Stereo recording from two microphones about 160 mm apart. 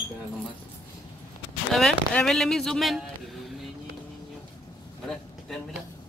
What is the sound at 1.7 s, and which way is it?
Speech, 5° left (ahead or behind).